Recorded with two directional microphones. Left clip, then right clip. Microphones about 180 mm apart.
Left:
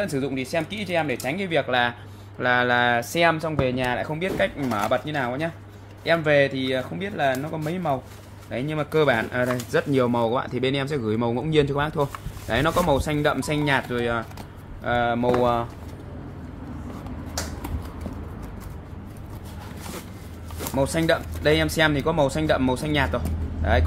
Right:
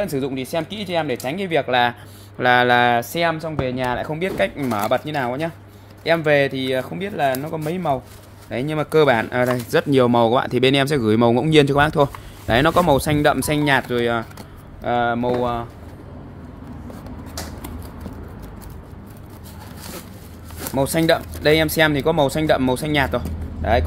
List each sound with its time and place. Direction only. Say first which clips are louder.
0.0 s speech: right 3 dB; 35° right (ahead or behind)
3.0 s speech: even; 20° right (ahead or behind)
3.8 s speech: right 3 dB; 30° right (ahead or behind)
14.8 s speech: right 3 dB; 35° right (ahead or behind)
15.4 s speech: left 1 dB; 5° right (ahead or behind)
20.7 s speech: right 4 dB; 45° right (ahead or behind)